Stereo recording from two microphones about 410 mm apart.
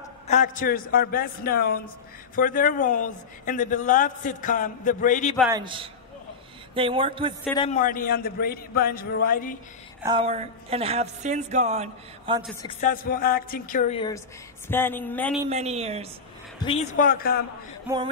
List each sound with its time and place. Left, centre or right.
0.3 s a man's voice: centre
5.4 s a woman's voice: centre
7.4 s a man's voice: centre
10.0 s a woman's voice: centre
12.6 s a man's voice: centre
15.5 s a woman's voice: centre
16.5 s a man's voice: centre
17.8 s a woman's voice: centre